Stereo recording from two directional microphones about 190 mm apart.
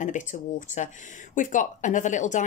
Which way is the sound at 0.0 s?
40° left (ahead or behind).